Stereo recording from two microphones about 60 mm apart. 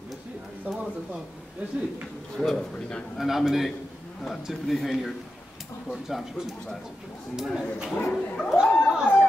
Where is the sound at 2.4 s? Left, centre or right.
Centre.